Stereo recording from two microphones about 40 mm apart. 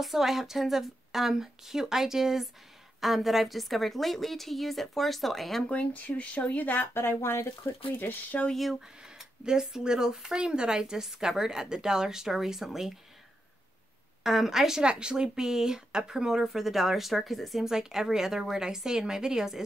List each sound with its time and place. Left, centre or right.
0.0 s a woman's voice: centre
5.7 s speech: left
6.9 s speech: left
8.0 s speech: left
9.0 s speech: centre
14.2 s a woman's voice: centre
17.6 s speech: centre